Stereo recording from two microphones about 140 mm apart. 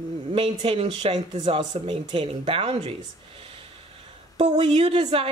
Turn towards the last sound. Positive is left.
turn(degrees=-45)  # may be behind; listen again after turning